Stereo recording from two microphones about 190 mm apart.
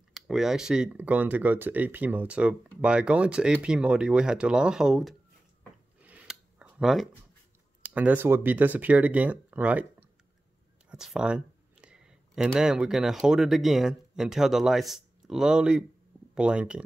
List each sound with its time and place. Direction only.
0.1 s speech: centre (ahead or behind)
5.9 s scissors: 5° right (ahead or behind)
7.8 s speech: 5° right (ahead or behind)
10.9 s a sound: 5° right (ahead or behind)
12.5 s speech: 5° right (ahead or behind)